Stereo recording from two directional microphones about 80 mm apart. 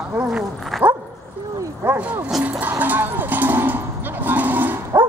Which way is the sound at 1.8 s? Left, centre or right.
Centre.